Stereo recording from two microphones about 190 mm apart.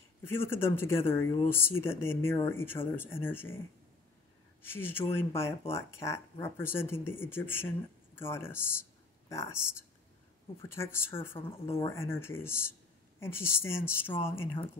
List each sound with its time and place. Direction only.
0.2 s speech: 10° left (ahead or behind)
10.6 s speech: 15° left (ahead or behind)